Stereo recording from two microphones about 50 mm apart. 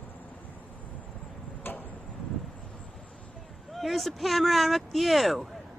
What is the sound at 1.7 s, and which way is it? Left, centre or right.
Tick-tock, left.